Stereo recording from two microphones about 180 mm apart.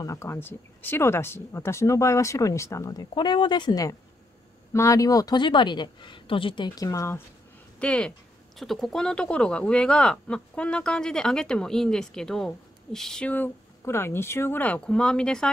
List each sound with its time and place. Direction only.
0.0 s speech: 15° left (ahead or behind)
7.8 s speech: 5° left (ahead or behind)